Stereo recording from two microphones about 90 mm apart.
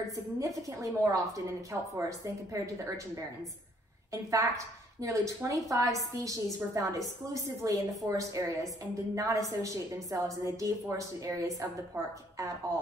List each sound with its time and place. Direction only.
0.7 s a woman's voice: 35° right (ahead or behind)